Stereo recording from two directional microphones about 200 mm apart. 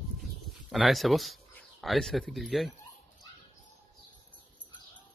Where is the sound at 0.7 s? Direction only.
Centre (ahead or behind).